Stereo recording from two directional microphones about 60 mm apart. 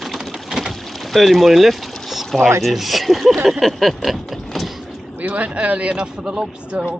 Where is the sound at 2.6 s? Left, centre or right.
Centre.